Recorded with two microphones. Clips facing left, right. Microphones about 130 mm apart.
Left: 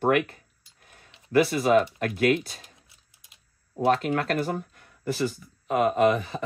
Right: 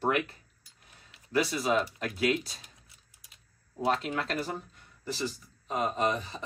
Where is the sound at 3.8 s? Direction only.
55° left (ahead or behind).